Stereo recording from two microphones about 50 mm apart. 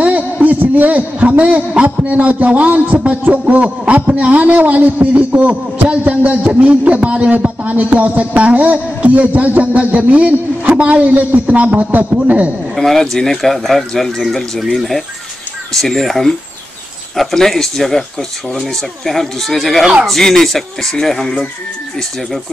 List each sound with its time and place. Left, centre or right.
0.0 s a man's voice: right
12.7 s speech: centre